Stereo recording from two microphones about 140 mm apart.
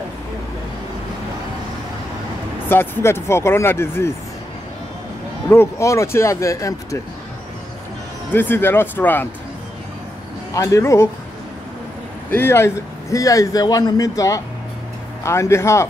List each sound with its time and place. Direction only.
2.7 s speech: 15° left (ahead or behind)
5.5 s speech: 20° left (ahead or behind)
8.3 s speech: 15° left (ahead or behind)
10.5 s speech: 20° left (ahead or behind)
12.3 s speech: 15° left (ahead or behind)